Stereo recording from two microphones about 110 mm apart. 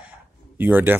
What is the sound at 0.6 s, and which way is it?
Speech, 15° right (ahead or behind).